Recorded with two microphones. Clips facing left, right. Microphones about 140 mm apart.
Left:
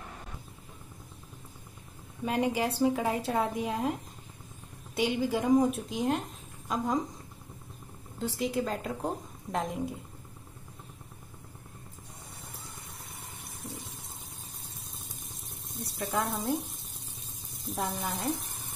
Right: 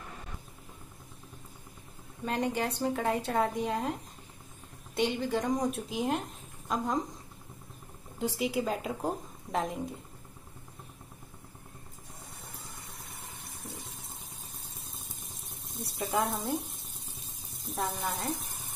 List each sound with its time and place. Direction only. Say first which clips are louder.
2.2 s a woman's voice: left 2 dB; 5° left (ahead or behind)
8.2 s a woman's voice: even; 10° right (ahead or behind)
13.7 s water: left 2 dB; centre (ahead or behind)
15.7 s frying: right 1 dB; centre (ahead or behind)
17.6 s a woman's voice: even; centre (ahead or behind)